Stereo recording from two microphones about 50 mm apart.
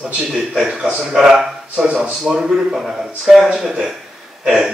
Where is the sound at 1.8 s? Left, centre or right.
Right.